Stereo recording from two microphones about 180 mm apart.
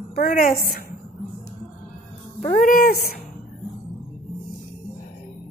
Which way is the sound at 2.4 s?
50° left (ahead or behind).